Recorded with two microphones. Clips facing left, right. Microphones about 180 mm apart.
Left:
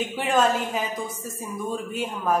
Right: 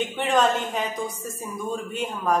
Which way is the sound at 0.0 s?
5° left (ahead or behind).